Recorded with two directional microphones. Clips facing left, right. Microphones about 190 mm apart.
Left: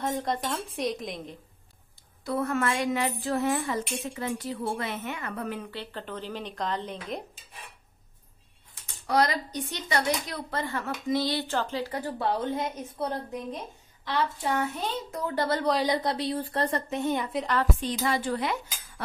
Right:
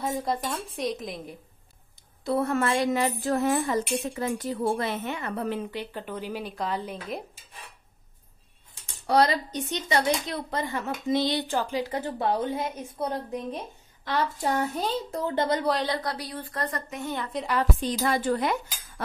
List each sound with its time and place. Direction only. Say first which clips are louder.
0.0 s a woman's voice: right 1 dB; 5° right (ahead or behind)
2.2 s speech: right 2 dB; 30° right (ahead or behind)
5.7 s speech: right 3 dB; 15° right (ahead or behind)
9.0 s speech: right 3 dB; 30° right (ahead or behind); by 13.1 s 5° right (ahead or behind)
14.0 s speech: right 1 dB; 45° right (ahead or behind); by 15.6 s 20° right (ahead or behind)
15.8 s speech: left 3 dB; 20° left (ahead or behind)
18.0 s a woman's voice: right 3 dB; 50° right (ahead or behind)